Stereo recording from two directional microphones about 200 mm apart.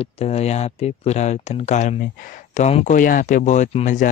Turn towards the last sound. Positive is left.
turn(degrees=40)  # may be behind; listen again after turning